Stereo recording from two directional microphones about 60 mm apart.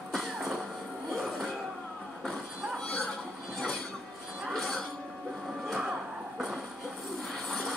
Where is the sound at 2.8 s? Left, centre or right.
Centre.